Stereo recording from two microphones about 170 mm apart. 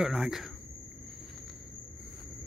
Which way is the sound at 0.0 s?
5° right (ahead or behind).